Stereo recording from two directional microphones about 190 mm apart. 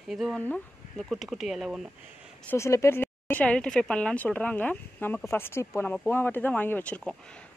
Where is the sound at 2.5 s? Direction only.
15° left (ahead or behind).